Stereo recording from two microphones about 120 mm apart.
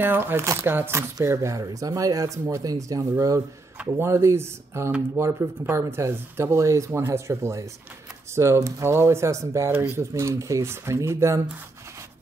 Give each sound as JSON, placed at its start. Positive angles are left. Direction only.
{"t": 0.0, "sound": "speech", "side_deg": -15}
{"t": 3.7, "sound": "speech", "side_deg": -10}
{"t": 4.1, "sound": "speech", "side_deg": -20}